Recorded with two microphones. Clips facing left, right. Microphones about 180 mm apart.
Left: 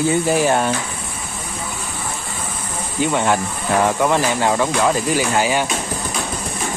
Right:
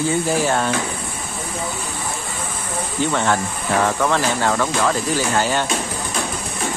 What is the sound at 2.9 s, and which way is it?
Speech, 15° left (ahead or behind).